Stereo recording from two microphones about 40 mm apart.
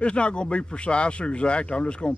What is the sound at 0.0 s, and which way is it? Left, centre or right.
A man's voice, left.